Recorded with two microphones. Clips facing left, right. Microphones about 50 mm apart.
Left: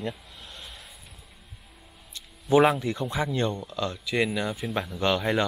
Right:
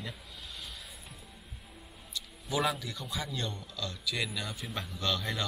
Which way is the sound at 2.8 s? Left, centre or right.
Left.